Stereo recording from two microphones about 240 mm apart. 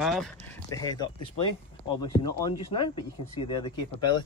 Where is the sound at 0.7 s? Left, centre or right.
Centre.